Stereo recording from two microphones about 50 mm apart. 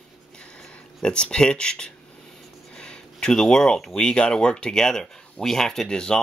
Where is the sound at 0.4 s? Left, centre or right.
Centre.